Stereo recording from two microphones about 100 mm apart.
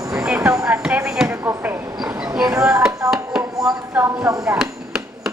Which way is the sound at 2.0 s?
5° right (ahead or behind).